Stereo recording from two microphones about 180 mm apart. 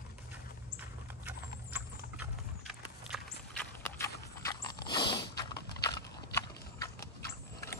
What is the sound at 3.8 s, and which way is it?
Horse, 15° left (ahead or behind).